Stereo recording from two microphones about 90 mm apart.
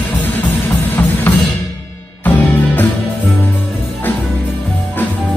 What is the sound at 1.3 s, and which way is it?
Music, 20° left (ahead or behind).